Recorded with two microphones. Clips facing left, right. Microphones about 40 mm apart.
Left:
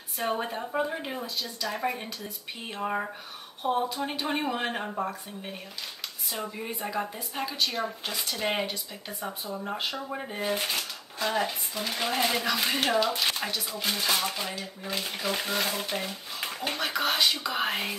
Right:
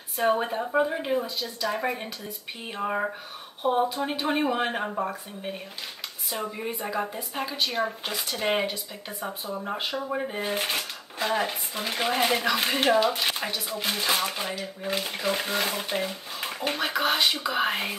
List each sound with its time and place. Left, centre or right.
0.2 s a woman's voice: centre
8.1 s a woman's voice: centre
10.6 s dishes: right
11.8 s a sound: right
12.1 s a woman's voice: centre
13.8 s a sound: right
14.6 s a woman's voice: right